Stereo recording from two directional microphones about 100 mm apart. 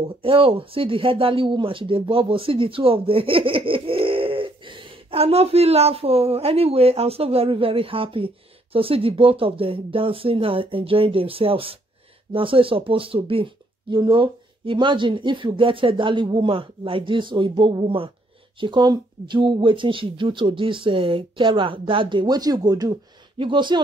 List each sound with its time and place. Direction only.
0.0 s speech: 65° right (ahead or behind)
18.6 s speech: 50° right (ahead or behind)
23.3 s speech: 55° right (ahead or behind)